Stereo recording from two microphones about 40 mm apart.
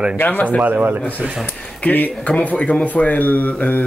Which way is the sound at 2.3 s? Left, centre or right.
Left.